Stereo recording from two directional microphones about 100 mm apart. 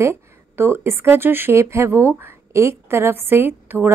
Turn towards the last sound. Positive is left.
turn(degrees=-20)  # may be behind; listen again after turning